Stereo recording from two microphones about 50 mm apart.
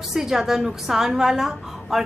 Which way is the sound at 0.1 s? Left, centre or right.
Centre.